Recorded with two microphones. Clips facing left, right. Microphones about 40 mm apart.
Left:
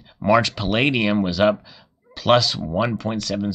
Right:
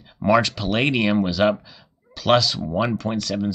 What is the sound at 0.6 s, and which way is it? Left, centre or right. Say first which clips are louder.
Speech: left 1 dB; centre.